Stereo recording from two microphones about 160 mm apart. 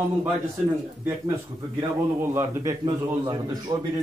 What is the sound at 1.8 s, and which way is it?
A man's voice, 20° right (ahead or behind).